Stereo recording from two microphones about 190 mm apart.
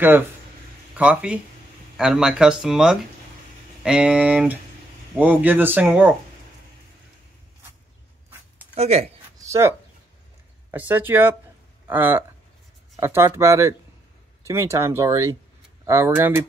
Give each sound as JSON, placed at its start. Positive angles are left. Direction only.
{"t": 0.9, "sound": "speech", "side_deg": -5}
{"t": 8.7, "sound": "speech", "side_deg": -35}
{"t": 9.4, "sound": "a sound", "side_deg": -15}
{"t": 10.7, "sound": "speech", "side_deg": -10}